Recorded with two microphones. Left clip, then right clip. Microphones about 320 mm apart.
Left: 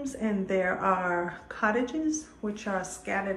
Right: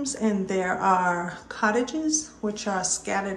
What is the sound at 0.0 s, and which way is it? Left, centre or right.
A woman's voice, centre.